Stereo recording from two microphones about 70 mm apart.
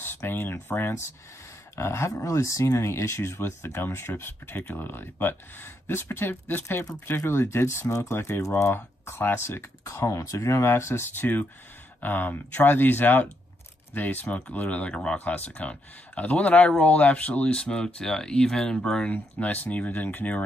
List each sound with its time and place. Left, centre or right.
0.0 s speech: left; by 19.0 s centre
19.0 s speech: left